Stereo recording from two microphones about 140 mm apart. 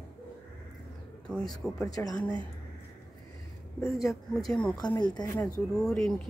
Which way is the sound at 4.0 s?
Centre (ahead or behind).